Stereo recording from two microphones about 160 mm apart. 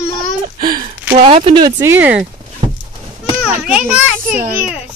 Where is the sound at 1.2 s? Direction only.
40° right (ahead or behind); by 2.2 s 10° right (ahead or behind).